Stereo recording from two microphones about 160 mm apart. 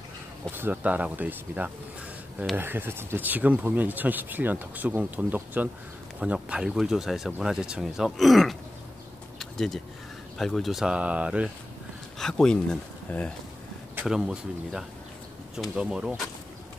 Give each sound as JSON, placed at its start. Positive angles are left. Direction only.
{"t": 0.5, "sound": "speech", "side_deg": -10}
{"t": 9.4, "sound": "a sound", "side_deg": 0}
{"t": 10.3, "sound": "speech", "side_deg": 0}
{"t": 12.2, "sound": "speech", "side_deg": 5}